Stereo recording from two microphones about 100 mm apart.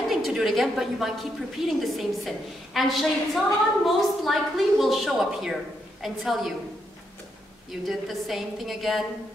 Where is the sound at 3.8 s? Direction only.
Centre (ahead or behind).